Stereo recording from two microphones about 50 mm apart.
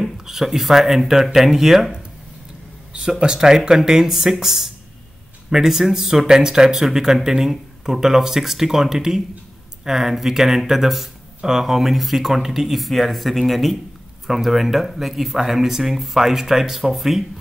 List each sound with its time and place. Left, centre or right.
0.0 s speech: centre